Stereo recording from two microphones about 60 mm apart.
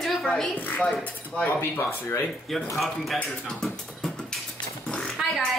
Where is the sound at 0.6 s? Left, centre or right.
Left.